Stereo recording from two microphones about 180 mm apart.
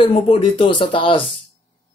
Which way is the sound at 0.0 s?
30° left (ahead or behind).